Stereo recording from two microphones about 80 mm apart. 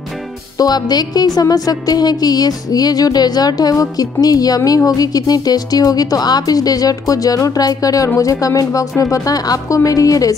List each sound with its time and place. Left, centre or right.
0.6 s speech: left